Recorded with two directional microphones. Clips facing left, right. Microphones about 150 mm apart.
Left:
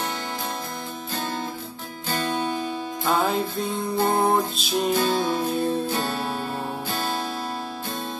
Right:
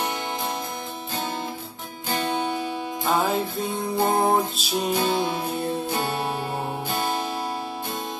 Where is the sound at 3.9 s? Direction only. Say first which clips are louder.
Even; 15° right (ahead or behind).